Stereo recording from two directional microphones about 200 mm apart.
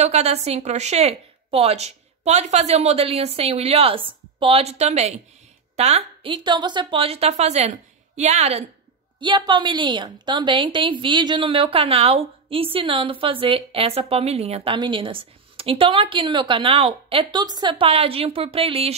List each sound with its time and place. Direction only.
0.0 s a woman's voice: 30° right (ahead or behind)